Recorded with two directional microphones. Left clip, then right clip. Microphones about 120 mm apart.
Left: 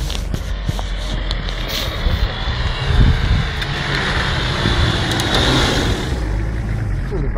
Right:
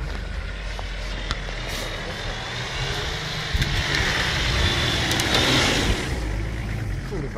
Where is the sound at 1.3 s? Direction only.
40° right (ahead or behind).